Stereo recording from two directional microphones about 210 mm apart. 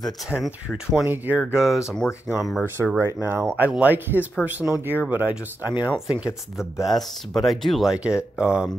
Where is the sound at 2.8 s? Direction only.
10° right (ahead or behind).